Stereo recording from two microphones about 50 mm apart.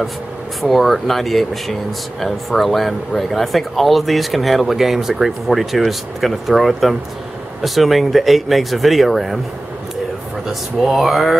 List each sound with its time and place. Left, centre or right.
0.6 s speech: centre
10.8 s speech: centre